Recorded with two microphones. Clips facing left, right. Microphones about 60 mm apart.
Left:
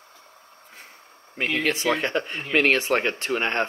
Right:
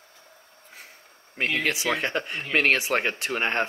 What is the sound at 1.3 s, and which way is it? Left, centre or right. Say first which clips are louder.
Speech: left 1 dB; centre.